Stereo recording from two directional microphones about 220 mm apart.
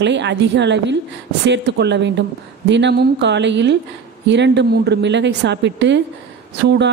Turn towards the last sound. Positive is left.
turn(degrees=-50)  # may be behind; listen again after turning